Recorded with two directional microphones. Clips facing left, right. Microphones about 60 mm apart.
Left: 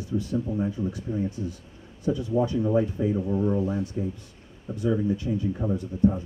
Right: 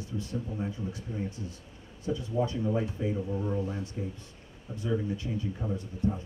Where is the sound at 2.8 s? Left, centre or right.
Centre.